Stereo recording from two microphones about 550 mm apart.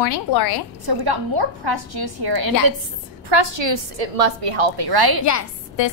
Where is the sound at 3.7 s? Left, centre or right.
Right.